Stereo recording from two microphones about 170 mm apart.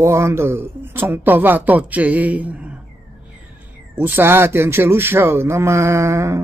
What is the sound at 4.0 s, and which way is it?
Mantra, 10° right (ahead or behind).